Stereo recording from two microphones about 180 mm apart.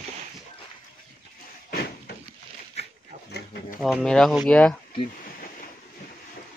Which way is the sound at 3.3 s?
65° left (ahead or behind).